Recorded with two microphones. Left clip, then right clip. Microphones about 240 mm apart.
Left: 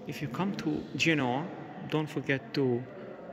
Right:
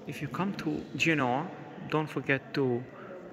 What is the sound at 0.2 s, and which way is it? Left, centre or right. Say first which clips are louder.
A man's voice: even; centre.